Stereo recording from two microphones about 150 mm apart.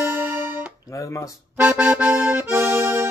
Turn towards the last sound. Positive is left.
turn(degrees=-15)  # may be behind; listen again after turning